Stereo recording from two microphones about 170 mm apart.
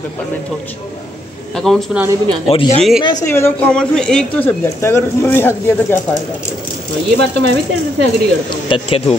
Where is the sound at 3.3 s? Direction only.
10° left (ahead or behind).